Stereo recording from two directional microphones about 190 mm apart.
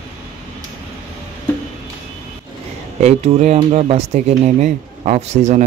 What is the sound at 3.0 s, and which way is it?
Speech, 35° right (ahead or behind).